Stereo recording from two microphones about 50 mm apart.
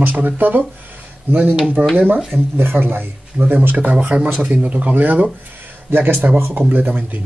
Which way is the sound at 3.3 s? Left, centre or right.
Right.